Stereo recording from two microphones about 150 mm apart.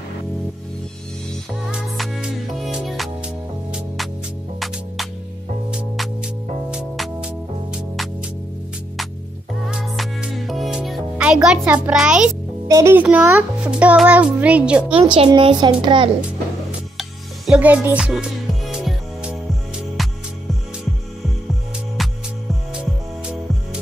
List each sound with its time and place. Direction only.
1.5 s music: centre (ahead or behind)
5.7 s music: 5° right (ahead or behind)
9.7 s music: 5° right (ahead or behind)
12.6 s a child's voice: 20° right (ahead or behind)
15.0 s a woman's voice: 35° right (ahead or behind)
17.5 s a child's voice: 10° right (ahead or behind)
18.7 s music: 5° right (ahead or behind)